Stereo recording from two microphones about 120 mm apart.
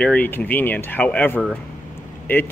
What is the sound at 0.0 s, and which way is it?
Speech, 15° left (ahead or behind).